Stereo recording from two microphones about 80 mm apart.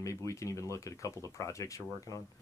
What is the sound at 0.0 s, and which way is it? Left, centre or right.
Speech, left.